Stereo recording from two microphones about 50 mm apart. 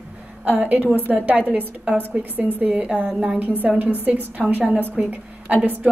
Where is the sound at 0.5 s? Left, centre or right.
Right.